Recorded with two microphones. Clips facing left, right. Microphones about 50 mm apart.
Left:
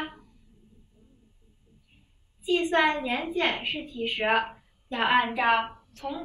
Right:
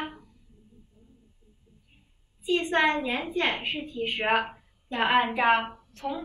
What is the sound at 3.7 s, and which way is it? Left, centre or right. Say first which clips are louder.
Speech: right 1 dB; centre.